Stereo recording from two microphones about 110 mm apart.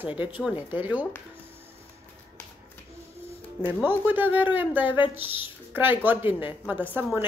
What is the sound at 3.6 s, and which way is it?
A woman's voice, 20° right (ahead or behind).